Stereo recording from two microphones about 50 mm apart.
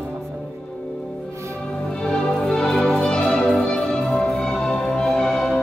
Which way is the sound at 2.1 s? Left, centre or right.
Centre.